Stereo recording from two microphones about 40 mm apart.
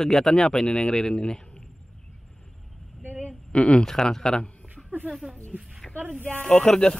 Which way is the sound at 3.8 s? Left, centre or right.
Centre.